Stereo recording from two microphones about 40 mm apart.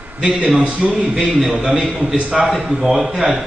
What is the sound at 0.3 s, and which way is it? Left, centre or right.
Speech, centre.